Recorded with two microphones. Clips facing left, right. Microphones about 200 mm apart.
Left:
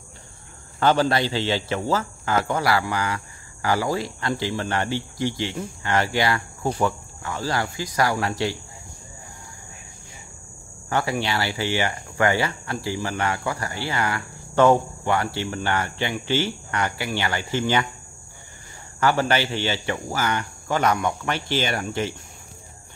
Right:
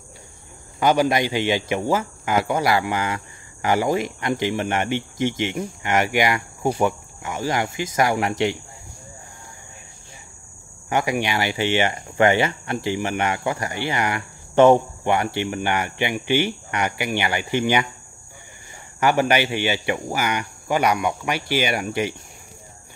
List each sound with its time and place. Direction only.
0.7 s speech: 15° right (ahead or behind)
10.9 s speech: 15° right (ahead or behind)
18.9 s speech: 15° right (ahead or behind)